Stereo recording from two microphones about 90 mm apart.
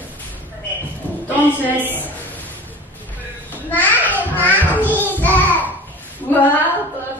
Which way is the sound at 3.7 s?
20° left (ahead or behind).